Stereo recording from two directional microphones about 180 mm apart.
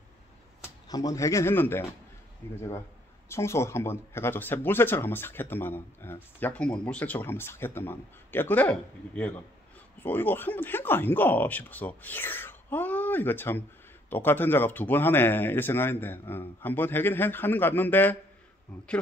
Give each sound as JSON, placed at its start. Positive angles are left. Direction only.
{"t": 0.8, "sound": "speech", "side_deg": 20}